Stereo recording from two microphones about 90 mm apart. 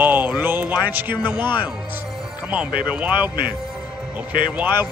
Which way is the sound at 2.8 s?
15° right (ahead or behind).